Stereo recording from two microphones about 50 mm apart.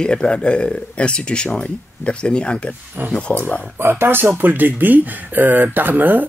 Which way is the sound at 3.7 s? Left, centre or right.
Right.